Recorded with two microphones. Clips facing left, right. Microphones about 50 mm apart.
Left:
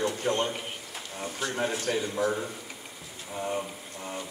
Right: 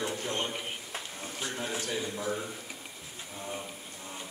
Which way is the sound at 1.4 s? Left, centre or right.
Left.